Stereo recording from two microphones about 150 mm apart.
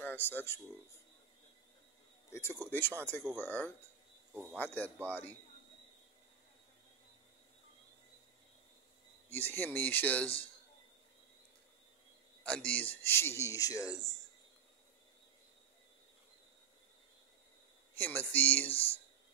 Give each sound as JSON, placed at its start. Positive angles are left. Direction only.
{"t": 0.0, "sound": "speech", "side_deg": 15}
{"t": 2.6, "sound": "speech", "side_deg": 10}
{"t": 4.3, "sound": "speech", "side_deg": -15}
{"t": 4.6, "sound": "speech", "side_deg": 10}
{"t": 9.3, "sound": "speech", "side_deg": 15}
{"t": 12.4, "sound": "speech", "side_deg": 5}
{"t": 17.9, "sound": "speech", "side_deg": 10}